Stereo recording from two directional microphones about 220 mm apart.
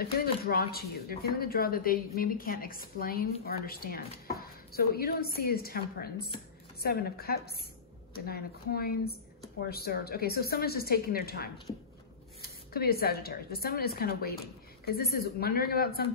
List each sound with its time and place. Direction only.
0.0 s speech: 45° left (ahead or behind)